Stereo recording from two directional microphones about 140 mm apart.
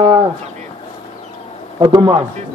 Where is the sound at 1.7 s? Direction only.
30° right (ahead or behind).